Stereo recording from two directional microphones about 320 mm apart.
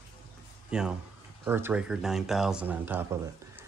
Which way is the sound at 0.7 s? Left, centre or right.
Centre.